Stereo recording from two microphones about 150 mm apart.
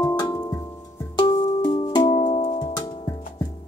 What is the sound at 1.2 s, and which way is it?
Music, 30° left (ahead or behind).